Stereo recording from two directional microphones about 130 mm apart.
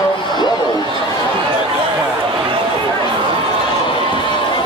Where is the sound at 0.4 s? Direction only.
35° left (ahead or behind).